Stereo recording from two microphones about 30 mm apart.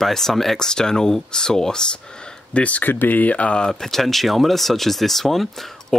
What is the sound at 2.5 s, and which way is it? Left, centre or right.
Speech, left.